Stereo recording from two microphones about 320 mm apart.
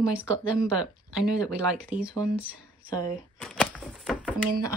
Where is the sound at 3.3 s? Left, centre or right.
Centre.